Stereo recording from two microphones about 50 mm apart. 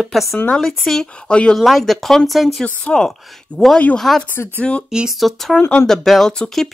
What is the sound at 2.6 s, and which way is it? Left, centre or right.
Speech, left.